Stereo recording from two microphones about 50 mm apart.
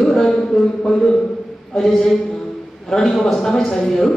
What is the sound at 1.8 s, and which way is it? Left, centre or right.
A man's voice, centre.